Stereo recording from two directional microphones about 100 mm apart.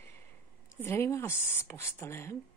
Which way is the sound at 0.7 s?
25° left (ahead or behind).